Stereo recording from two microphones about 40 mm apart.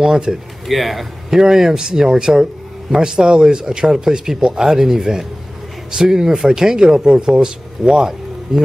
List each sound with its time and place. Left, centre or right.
0.3 s speech: centre